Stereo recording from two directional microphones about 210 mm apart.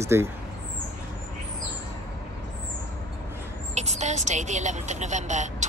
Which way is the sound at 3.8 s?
35° right (ahead or behind).